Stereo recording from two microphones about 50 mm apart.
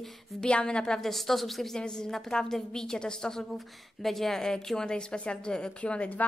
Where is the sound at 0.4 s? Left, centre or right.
Centre.